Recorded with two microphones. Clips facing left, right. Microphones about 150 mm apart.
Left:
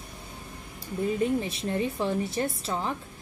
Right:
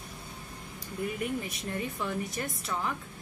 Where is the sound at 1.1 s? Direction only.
25° left (ahead or behind).